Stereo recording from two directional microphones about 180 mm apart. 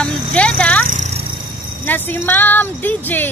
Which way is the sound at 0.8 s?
40° right (ahead or behind).